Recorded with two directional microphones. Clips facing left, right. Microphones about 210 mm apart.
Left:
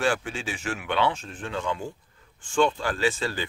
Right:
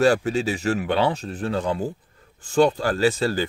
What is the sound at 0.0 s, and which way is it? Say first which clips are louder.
Speech: right 8 dB; 40° right (ahead or behind).